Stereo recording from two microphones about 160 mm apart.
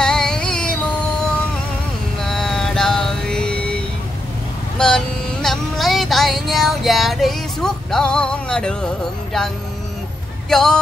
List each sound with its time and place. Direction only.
0.0 s music: 5° left (ahead or behind)
2.1 s music: centre (ahead or behind)
4.7 s a sound: 5° left (ahead or behind)
10.5 s speech: 5° left (ahead or behind)